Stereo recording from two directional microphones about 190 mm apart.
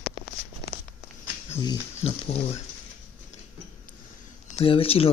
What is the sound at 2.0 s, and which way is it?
Speech, 30° left (ahead or behind).